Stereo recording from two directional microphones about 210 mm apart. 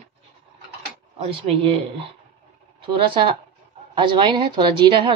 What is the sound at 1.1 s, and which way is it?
Speech, 25° right (ahead or behind).